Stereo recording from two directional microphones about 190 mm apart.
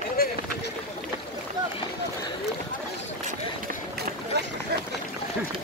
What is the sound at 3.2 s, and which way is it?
Run, 45° right (ahead or behind).